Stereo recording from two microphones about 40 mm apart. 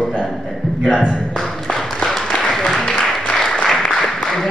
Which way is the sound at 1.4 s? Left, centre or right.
Centre.